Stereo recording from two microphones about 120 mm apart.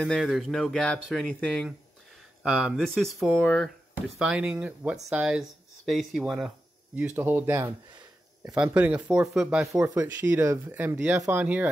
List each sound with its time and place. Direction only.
0.0 s speech: centre (ahead or behind)
2.4 s speech: 5° right (ahead or behind)
3.9 s speech: 10° right (ahead or behind)
7.0 s speech: 15° right (ahead or behind)
9.7 s speech: 25° right (ahead or behind)